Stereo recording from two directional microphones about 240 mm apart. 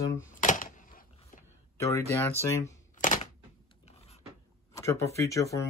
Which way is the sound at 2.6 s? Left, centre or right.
Left.